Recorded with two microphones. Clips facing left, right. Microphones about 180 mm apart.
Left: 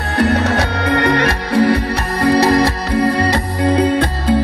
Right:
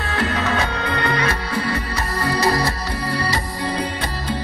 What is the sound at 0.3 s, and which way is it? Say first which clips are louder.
Music: left 6 dB; 75° left (ahead or behind).